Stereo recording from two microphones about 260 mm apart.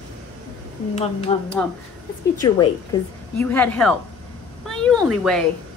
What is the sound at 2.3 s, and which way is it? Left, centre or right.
A woman's voice, centre.